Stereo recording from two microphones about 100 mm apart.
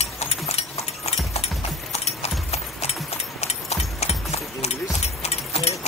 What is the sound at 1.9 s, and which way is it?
Clip-clop, 90° left.